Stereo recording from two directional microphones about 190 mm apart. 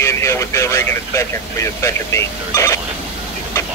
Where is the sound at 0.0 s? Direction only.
15° left (ahead or behind).